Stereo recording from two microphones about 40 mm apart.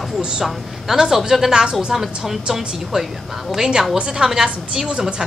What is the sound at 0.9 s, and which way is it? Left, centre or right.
Speech, centre.